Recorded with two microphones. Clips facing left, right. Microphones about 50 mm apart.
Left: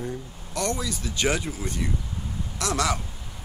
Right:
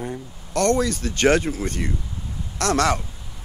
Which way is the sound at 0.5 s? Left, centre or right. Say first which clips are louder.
Right 9 dB; right.